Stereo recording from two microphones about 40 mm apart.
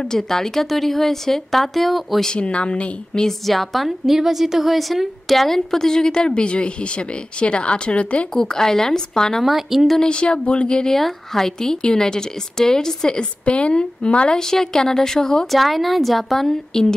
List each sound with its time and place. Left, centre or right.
0.1 s a woman's voice: centre
2.3 s speech: left
3.2 s a woman's voice: centre; by 8.3 s left
8.4 s a woman's voice: centre
9.4 s a woman's voice: centre
10.0 s speech: left
10.9 s a woman's voice: centre
13.5 s speech: left
14.5 s a woman's voice: centre
15.6 s a woman's voice: centre